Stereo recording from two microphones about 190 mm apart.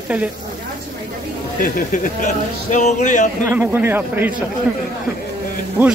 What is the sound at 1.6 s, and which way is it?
Speech, 45° left (ahead or behind).